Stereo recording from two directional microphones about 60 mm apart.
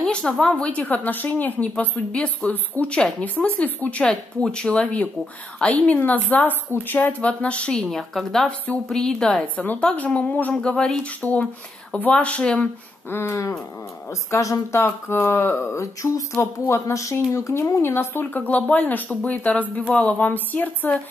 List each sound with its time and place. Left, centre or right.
0.0 s a woman's voice: centre
4.0 s a woman's voice: centre
7.8 s a woman's voice: centre
9.6 s a woman's voice: left
10.5 s speech: centre
11.1 s a woman's voice: left
13.1 s speech: left
14.3 s speech: left
14.8 s speech: left
16.6 s speech: left
17.8 s speech: left
18.5 s a woman's voice: left